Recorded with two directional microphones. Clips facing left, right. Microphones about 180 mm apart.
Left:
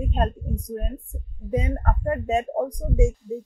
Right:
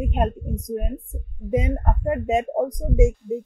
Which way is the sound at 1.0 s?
55° right (ahead or behind).